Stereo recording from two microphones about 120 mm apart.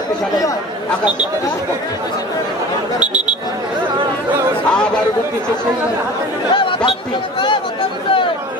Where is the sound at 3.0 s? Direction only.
10° right (ahead or behind).